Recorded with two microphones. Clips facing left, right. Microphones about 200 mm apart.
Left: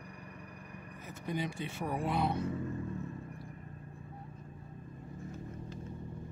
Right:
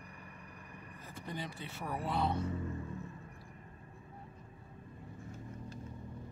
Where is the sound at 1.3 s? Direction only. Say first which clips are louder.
Left 7 dB; 15° left (ahead or behind).